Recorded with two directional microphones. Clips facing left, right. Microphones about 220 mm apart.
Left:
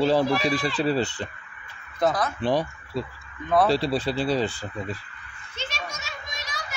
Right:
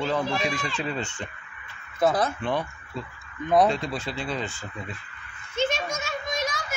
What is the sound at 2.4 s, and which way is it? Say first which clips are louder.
Speech: left 4 dB; 35° left (ahead or behind).